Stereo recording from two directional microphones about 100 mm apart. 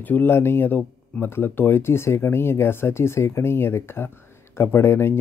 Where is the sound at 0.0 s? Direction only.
20° left (ahead or behind).